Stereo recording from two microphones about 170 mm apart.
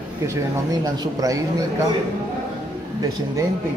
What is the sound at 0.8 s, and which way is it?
Speech, 20° right (ahead or behind).